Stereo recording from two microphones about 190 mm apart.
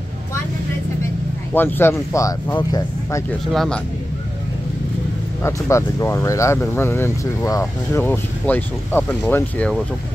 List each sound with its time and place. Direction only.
1.5 s speech: 10° left (ahead or behind)
3.5 s a man's voice: 5° left (ahead or behind)
5.4 s speech: 15° left (ahead or behind)